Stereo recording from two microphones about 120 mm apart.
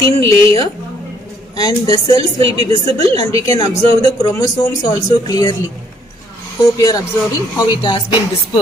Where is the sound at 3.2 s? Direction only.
25° left (ahead or behind).